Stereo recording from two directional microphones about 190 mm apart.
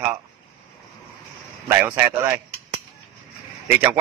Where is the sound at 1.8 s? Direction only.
10° right (ahead or behind).